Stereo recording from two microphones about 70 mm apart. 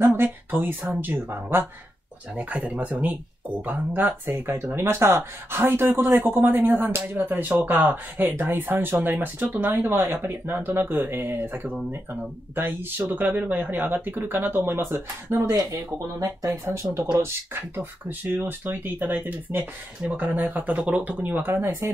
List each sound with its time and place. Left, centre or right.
0.0 s speech: right
2.3 s speech: centre
4.4 s speech: right
15.7 s speech: right